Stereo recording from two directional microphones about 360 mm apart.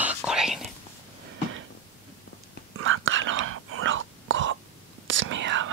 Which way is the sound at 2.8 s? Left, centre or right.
Right.